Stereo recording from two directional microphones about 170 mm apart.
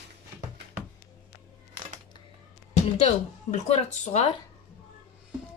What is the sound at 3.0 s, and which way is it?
Speech, 40° left (ahead or behind).